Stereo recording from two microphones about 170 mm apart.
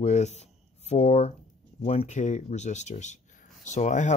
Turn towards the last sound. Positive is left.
turn(degrees=45)  # may be behind; listen again after turning